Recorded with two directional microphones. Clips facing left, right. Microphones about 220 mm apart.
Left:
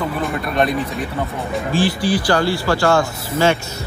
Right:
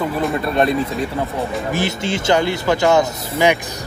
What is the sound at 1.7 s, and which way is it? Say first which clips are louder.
Speech: left 7 dB; 25° right (ahead or behind).